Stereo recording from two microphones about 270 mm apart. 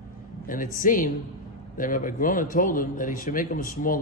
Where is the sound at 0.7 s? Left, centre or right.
Left.